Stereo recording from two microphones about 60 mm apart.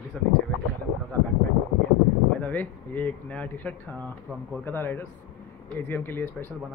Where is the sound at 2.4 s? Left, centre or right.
Left.